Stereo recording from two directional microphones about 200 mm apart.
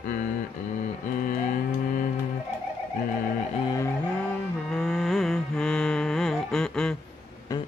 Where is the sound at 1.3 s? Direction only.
40° left (ahead or behind).